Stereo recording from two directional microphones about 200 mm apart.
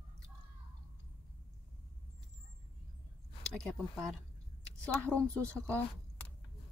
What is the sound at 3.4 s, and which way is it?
Speech, centre (ahead or behind).